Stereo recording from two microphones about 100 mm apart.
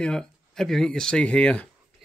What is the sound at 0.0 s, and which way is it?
Speech, 5° left (ahead or behind).